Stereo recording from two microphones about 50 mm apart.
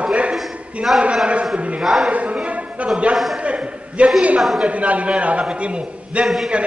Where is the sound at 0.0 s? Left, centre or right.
Right.